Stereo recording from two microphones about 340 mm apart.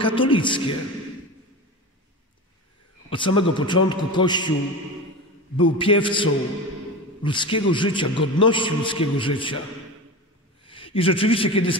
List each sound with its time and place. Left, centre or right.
0.0 s a man's voice: centre
3.1 s a man's voice: centre
5.6 s a man's voice: centre
7.2 s a man's voice: centre
10.6 s a man's voice: centre